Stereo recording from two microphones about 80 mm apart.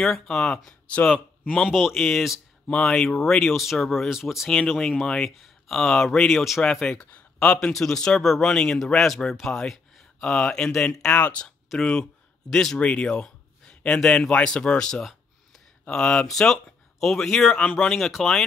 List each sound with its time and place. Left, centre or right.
0.0 s speech: centre
2.7 s speech: centre